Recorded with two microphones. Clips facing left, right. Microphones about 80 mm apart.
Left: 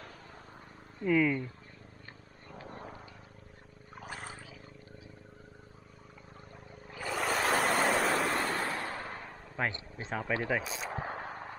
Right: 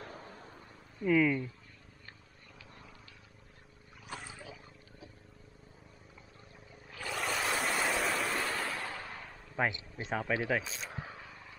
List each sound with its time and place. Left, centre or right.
1.0 s speech: centre
2.5 s purr: left
3.9 s a sound: left
6.9 s ocean: centre
8.5 s a sound: left
9.6 s speech: centre
10.9 s vehicle: left